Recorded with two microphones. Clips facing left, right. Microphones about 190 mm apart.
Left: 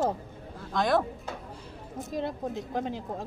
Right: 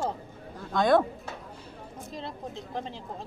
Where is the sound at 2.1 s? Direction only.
50° left (ahead or behind).